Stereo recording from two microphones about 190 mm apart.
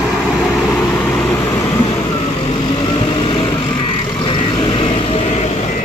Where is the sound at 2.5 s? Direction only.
30° left (ahead or behind).